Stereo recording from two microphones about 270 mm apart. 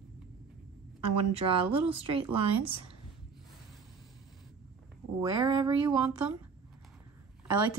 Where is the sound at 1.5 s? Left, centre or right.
Right.